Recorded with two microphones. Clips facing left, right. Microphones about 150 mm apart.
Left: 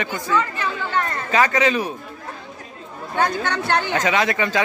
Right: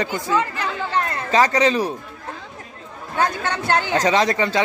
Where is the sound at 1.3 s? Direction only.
35° right (ahead or behind).